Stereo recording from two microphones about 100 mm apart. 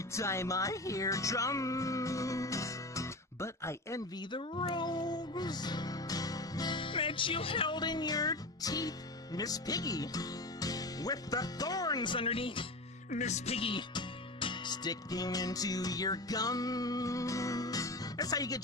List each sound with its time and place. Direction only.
0.1 s music: 30° left (ahead or behind)
4.3 s speech: 60° left (ahead or behind)
4.6 s music: 45° left (ahead or behind)